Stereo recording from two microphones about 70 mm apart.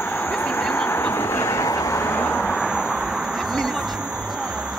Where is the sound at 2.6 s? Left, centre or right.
Centre.